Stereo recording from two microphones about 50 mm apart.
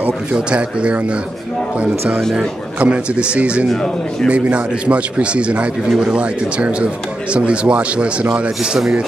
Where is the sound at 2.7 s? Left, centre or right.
Right.